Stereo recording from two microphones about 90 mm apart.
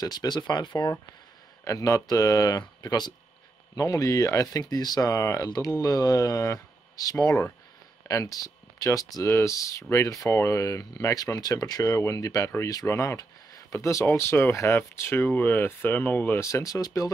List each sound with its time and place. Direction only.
0.0 s speech: 45° left (ahead or behind)
1.6 s speech: 40° left (ahead or behind)
3.7 s speech: 40° left (ahead or behind); by 16.4 s 25° left (ahead or behind)
16.4 s speech: 35° left (ahead or behind)